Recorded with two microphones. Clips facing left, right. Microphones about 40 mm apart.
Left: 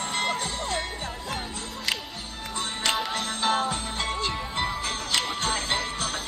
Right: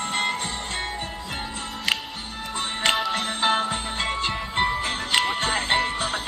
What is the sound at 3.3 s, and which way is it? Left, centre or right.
Music, right.